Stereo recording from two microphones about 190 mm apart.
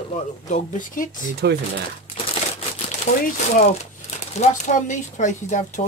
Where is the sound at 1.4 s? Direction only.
60° right (ahead or behind).